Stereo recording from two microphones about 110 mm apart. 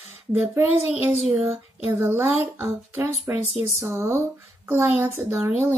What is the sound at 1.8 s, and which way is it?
A woman's voice, 25° right (ahead or behind).